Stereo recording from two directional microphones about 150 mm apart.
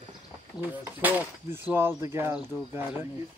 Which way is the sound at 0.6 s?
10° right (ahead or behind).